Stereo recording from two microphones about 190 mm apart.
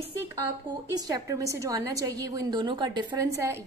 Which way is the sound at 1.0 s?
20° right (ahead or behind).